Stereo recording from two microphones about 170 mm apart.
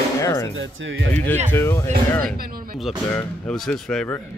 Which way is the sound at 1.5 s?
15° left (ahead or behind).